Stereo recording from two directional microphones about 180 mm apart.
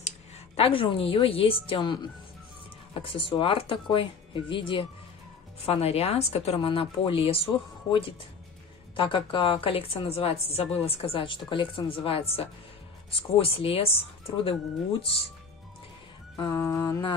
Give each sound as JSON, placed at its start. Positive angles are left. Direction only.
{"t": 0.6, "sound": "a woman's voice", "side_deg": 30}
{"t": 8.9, "sound": "a woman's voice", "side_deg": 25}
{"t": 16.3, "sound": "music", "side_deg": 20}